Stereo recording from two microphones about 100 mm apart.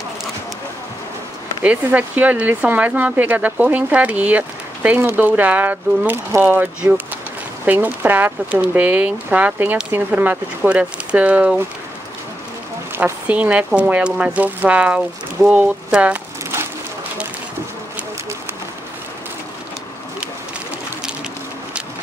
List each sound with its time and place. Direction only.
1.6 s speech: 15° right (ahead or behind)
12.9 s speech: 20° right (ahead or behind)